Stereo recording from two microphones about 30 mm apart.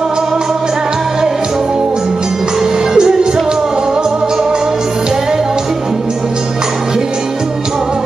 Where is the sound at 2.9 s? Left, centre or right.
Right.